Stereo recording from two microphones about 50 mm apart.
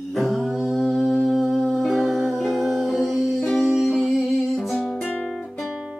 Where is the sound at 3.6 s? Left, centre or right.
Centre.